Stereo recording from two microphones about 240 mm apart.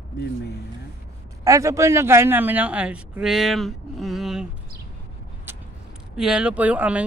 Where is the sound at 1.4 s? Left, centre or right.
Centre.